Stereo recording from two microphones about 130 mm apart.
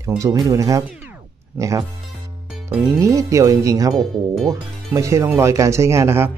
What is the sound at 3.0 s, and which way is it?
Speech, 25° right (ahead or behind).